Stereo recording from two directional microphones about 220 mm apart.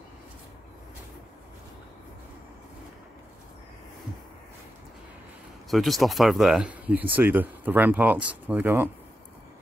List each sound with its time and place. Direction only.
5.7 s speech: centre (ahead or behind)